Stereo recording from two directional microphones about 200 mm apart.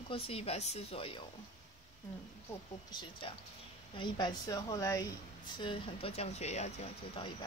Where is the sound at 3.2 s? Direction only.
25° left (ahead or behind).